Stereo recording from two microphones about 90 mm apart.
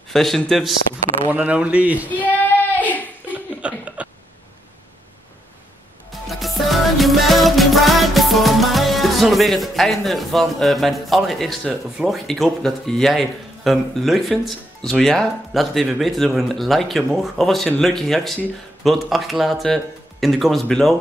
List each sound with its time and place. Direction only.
0.1 s speech: 5° left (ahead or behind)
1.3 s speech: 15° right (ahead or behind)
2.0 s child singing: 20° left (ahead or behind)
3.6 s a sound: 15° right (ahead or behind)
6.2 s music: centre (ahead or behind)
17.6 s speech: 5° left (ahead or behind)